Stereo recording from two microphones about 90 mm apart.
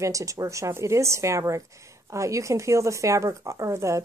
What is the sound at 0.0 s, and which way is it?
A woman's voice, 35° right (ahead or behind).